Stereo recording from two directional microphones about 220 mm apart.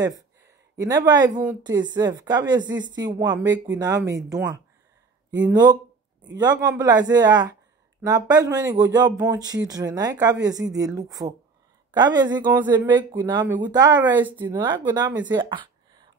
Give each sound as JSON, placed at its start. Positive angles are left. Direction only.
{"t": 0.7, "sound": "a woman's voice", "side_deg": -15}